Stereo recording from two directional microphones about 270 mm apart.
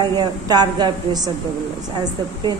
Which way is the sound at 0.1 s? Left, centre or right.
Centre.